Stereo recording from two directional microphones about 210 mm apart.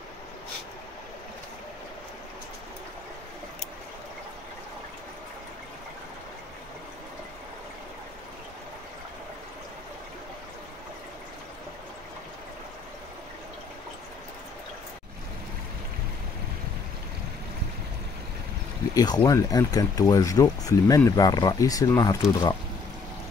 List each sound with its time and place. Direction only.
18.9 s speech: 20° left (ahead or behind)